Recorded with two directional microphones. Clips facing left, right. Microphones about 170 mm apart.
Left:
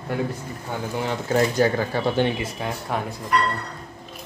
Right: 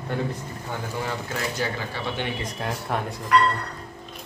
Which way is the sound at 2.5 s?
Centre (ahead or behind).